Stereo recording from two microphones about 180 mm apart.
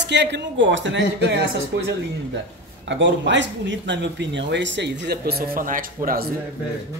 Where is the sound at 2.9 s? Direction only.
90° right; by 5.9 s 50° right (ahead or behind).